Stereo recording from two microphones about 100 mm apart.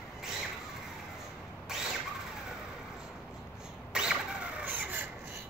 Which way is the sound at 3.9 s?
10° right (ahead or behind).